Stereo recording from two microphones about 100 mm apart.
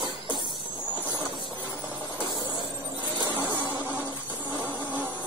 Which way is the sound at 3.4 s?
20° right (ahead or behind).